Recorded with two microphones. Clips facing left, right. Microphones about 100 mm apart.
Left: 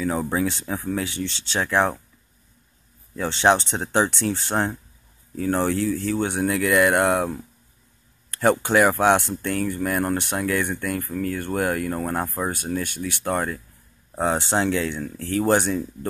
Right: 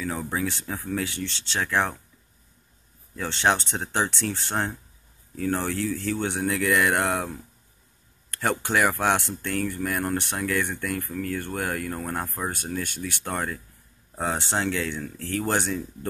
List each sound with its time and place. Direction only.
0.0 s speech: 25° left (ahead or behind)
3.2 s speech: 20° left (ahead or behind)
8.3 s speech: 20° left (ahead or behind)
12.4 s speech: 10° left (ahead or behind)